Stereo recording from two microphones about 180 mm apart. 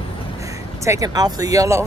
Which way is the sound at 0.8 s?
20° right (ahead or behind).